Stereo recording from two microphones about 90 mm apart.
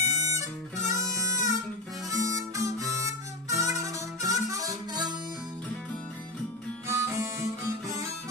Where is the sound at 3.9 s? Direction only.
40° right (ahead or behind).